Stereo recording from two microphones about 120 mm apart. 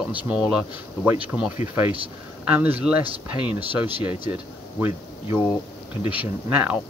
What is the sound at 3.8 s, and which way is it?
Speech, 55° right (ahead or behind).